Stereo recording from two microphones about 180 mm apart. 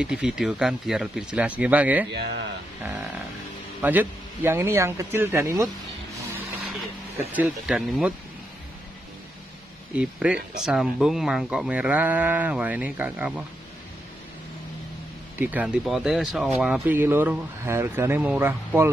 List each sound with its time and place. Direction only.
0.0 s speech: 5° right (ahead or behind)
2.1 s speech: 70° right (ahead or behind)
3.8 s speech: 10° right (ahead or behind)
7.3 s speech: 5° right (ahead or behind)
9.9 s speech: 5° right (ahead or behind)
15.3 s speech: 10° right (ahead or behind)